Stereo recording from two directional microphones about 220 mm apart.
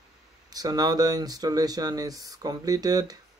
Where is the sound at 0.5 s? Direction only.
15° right (ahead or behind).